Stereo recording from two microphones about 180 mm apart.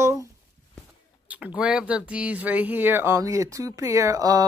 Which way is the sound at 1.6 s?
5° right (ahead or behind).